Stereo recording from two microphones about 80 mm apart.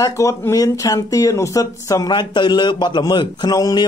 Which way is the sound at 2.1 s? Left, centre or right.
Left.